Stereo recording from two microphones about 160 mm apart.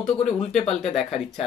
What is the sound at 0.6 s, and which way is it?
Speech, 40° left (ahead or behind).